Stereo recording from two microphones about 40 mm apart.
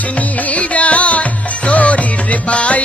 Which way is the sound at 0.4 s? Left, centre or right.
Left.